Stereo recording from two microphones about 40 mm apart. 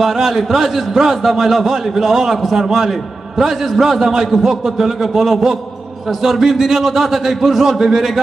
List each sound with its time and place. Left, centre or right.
0.0 s a man's voice: centre